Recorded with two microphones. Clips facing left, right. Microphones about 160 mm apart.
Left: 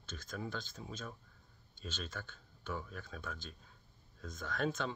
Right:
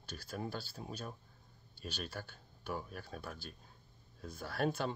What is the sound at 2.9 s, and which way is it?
Speech, 40° right (ahead or behind).